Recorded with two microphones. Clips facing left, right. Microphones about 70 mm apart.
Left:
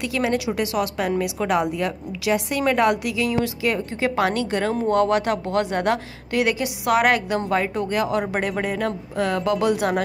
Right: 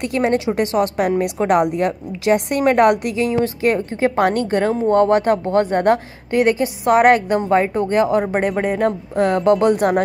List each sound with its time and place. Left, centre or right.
0.0 s a woman's voice: right
7.3 s a woman's voice: right